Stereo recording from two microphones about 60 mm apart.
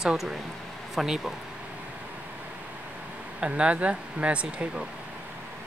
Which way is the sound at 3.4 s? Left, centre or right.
Centre.